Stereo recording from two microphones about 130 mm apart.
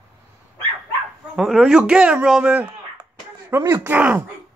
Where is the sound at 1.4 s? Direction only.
5° right (ahead or behind).